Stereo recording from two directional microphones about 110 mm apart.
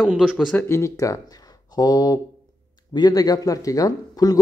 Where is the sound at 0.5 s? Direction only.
25° left (ahead or behind).